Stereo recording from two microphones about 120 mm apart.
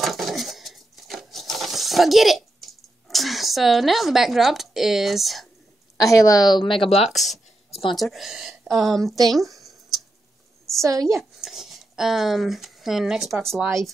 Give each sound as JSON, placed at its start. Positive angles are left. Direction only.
{"t": 0.0, "sound": "a sound", "side_deg": 0}
{"t": 5.9, "sound": "a woman's voice", "side_deg": 30}
{"t": 7.1, "sound": "speech", "side_deg": 0}
{"t": 9.3, "sound": "a sound", "side_deg": 0}
{"t": 10.8, "sound": "a woman's voice", "side_deg": -25}
{"t": 11.4, "sound": "speech", "side_deg": 0}